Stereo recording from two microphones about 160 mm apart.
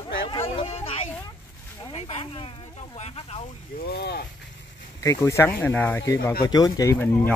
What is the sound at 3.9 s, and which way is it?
Speech, 85° left.